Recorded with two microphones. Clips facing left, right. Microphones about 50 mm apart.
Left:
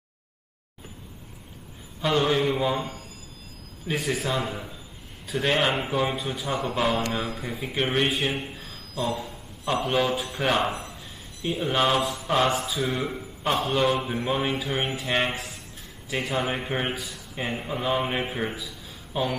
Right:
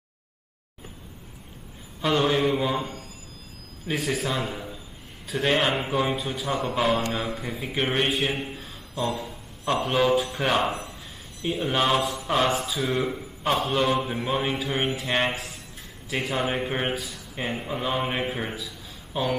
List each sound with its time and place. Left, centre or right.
2.0 s speech: centre
8.3 s a sound: centre
9.8 s speech: centre